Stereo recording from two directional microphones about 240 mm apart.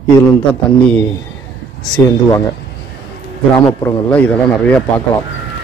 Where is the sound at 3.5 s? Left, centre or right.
Centre.